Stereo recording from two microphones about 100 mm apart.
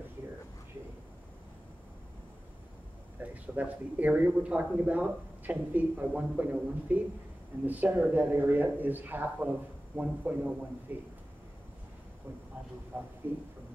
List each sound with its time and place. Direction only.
3.2 s speech: 15° right (ahead or behind)
12.9 s speech: 15° right (ahead or behind)